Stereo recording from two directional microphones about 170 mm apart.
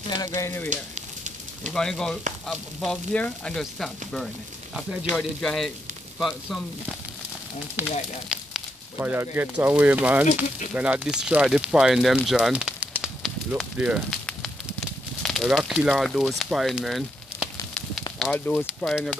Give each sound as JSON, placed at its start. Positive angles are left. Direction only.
{"t": 0.1, "sound": "speech", "side_deg": 20}
{"t": 0.7, "sound": "a sound", "side_deg": -45}
{"t": 1.7, "sound": "speech", "side_deg": 5}
{"t": 7.8, "sound": "speech", "side_deg": -10}
{"t": 12.3, "sound": "fire", "side_deg": -5}
{"t": 18.2, "sound": "speech", "side_deg": 10}